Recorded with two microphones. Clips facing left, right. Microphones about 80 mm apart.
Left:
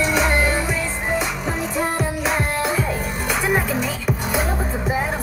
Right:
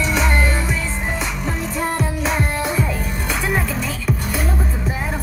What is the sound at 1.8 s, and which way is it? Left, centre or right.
Music, centre.